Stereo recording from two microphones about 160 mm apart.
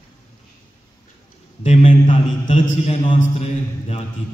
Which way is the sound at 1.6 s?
50° left (ahead or behind).